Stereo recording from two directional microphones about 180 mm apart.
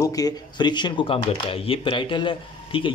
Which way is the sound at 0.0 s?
20° left (ahead or behind).